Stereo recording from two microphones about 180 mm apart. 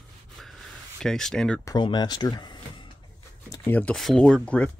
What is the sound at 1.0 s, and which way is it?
Speech, 5° left (ahead or behind).